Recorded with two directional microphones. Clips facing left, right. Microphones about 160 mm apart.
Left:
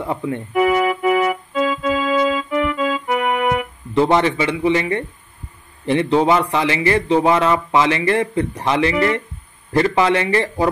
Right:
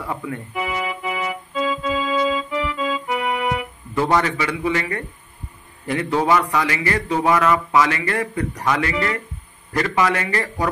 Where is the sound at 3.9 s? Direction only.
25° left (ahead or behind).